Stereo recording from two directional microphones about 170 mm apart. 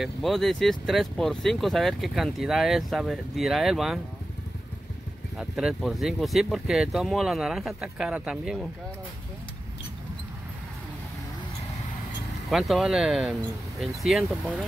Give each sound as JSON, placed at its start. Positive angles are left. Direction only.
{"t": 0.0, "sound": "speech", "side_deg": 0}
{"t": 5.4, "sound": "speech", "side_deg": -5}
{"t": 12.4, "sound": "speech", "side_deg": 0}